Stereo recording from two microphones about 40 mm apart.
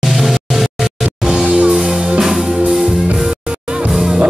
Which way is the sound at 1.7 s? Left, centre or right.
Centre.